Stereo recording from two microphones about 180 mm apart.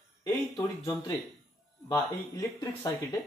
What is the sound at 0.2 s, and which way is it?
Speech, 20° left (ahead or behind).